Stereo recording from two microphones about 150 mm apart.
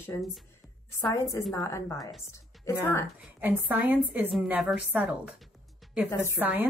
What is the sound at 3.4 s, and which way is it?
A woman's voice, 10° right (ahead or behind).